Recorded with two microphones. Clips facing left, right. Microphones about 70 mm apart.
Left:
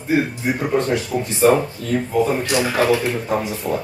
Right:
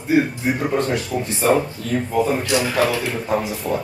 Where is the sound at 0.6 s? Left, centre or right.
Centre.